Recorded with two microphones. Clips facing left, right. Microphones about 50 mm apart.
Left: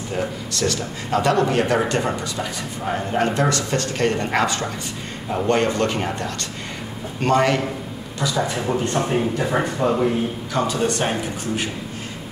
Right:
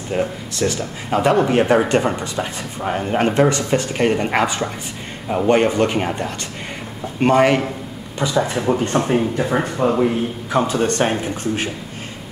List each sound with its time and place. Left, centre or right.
0.1 s speech: centre
8.5 s speech: centre
10.5 s speech: right